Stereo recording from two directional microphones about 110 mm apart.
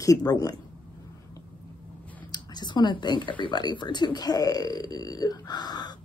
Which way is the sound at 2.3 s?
40° left (ahead or behind).